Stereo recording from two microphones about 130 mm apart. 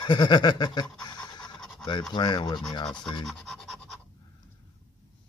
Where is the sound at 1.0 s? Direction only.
30° left (ahead or behind).